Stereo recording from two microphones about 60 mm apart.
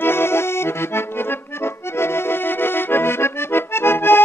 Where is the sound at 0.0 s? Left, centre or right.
Left.